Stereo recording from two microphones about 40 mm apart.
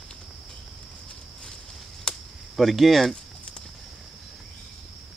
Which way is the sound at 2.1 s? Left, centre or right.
Centre.